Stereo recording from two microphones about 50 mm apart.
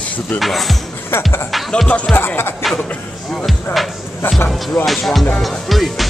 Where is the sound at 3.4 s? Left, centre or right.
Centre.